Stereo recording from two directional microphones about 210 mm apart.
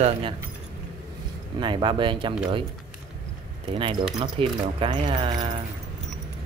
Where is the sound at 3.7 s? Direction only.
25° right (ahead or behind).